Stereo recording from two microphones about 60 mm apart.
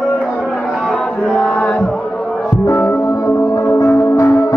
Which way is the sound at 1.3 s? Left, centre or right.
Centre.